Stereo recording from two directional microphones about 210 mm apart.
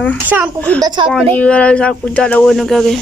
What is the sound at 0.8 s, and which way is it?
Speech, 20° right (ahead or behind).